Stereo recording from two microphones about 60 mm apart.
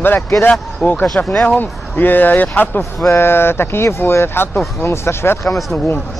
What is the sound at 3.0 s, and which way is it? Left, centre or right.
Speech, left.